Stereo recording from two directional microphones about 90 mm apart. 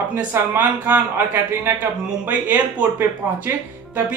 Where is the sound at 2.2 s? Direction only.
15° right (ahead or behind).